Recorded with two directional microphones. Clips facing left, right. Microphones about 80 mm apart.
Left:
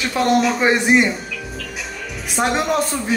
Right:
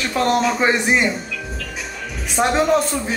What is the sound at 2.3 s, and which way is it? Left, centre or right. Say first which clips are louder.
Speech: right 3 dB; centre.